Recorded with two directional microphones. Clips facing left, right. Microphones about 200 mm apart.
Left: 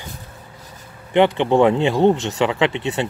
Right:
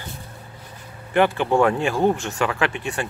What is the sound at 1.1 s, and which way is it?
Speech, 20° left (ahead or behind).